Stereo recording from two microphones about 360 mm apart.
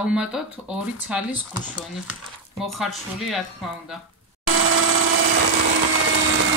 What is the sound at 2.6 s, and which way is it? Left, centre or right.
Speech, centre.